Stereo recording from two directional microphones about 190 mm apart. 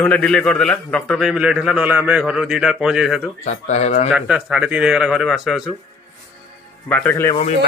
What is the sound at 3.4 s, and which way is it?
Speech, 40° left (ahead or behind).